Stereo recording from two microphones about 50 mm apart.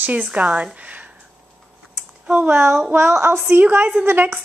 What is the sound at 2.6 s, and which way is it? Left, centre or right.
Speech, centre.